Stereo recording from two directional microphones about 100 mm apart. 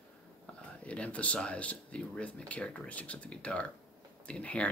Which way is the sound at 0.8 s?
10° left (ahead or behind).